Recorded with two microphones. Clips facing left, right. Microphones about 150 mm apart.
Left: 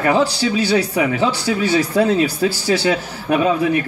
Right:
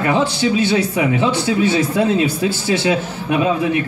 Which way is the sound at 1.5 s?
25° right (ahead or behind).